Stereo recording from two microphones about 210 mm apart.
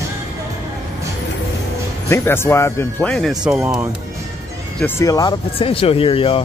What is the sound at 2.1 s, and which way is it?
Speech, 10° left (ahead or behind).